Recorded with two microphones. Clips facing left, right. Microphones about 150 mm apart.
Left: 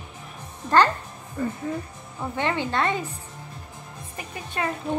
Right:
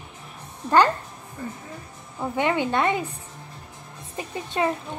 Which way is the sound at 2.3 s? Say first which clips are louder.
Right 3 dB; 15° right (ahead or behind).